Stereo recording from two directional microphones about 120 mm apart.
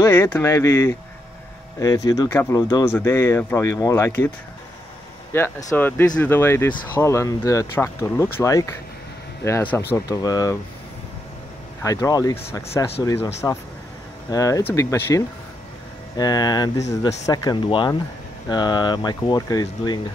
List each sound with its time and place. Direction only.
0.1 s speech: 15° left (ahead or behind)
5.3 s speech: 20° left (ahead or behind)
10.0 s speech: 30° left (ahead or behind)
11.8 s speech: 30° left (ahead or behind)
14.3 s speech: 30° left (ahead or behind)
16.2 s speech: 35° left (ahead or behind)